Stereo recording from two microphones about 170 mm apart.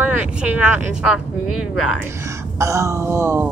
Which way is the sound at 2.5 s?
15° right (ahead or behind).